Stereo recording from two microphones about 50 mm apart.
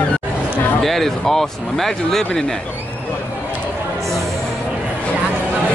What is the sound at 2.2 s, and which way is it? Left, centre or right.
Speech, centre.